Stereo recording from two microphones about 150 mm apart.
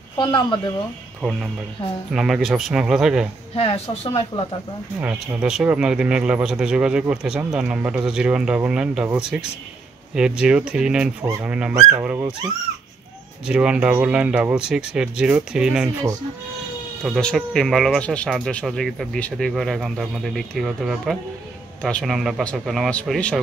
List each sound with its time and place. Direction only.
0.2 s speech: 35° left (ahead or behind)
2.1 s speech: centre (ahead or behind)
3.5 s speech: 45° left (ahead or behind)
5.0 s speech: 5° right (ahead or behind)
13.5 s speech: 5° right (ahead or behind)
17.0 s speech: 5° left (ahead or behind)